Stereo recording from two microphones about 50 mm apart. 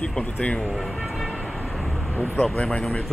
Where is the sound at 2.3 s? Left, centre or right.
Centre.